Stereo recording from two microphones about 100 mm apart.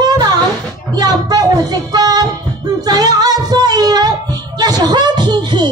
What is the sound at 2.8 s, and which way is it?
Singing, 40° right (ahead or behind).